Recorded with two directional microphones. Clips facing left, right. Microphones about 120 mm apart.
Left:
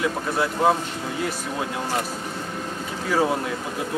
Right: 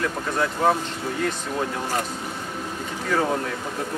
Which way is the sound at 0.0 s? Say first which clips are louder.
Left 1 dB; 5° left (ahead or behind).